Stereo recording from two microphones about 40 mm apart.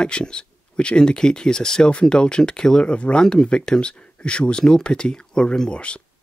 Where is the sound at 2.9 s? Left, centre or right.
Left.